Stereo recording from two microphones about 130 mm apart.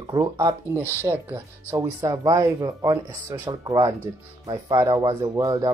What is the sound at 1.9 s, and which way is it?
Speech, 30° right (ahead or behind).